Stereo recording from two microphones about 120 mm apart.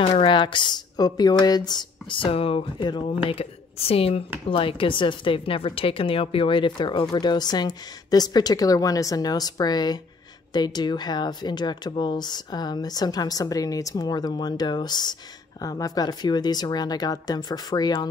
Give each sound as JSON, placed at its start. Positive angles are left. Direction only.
{"t": 0.0, "sound": "a woman's voice", "side_deg": 50}